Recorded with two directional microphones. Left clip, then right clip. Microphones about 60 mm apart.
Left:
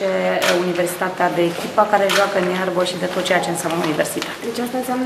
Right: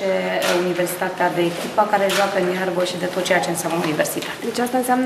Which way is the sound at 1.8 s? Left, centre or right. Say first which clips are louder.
Left 2 dB; centre.